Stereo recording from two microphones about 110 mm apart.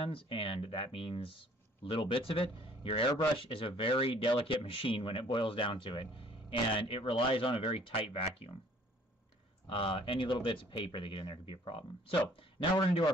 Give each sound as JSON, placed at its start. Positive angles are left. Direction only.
{"t": 0.0, "sound": "speech", "side_deg": 55}
{"t": 9.7, "sound": "speech", "side_deg": 50}